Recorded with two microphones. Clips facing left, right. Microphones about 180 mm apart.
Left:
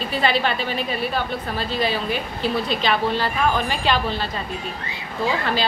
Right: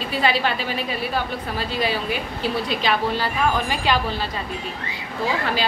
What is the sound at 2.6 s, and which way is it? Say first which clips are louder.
A woman's voice: left 1 dB; 10° right (ahead or behind).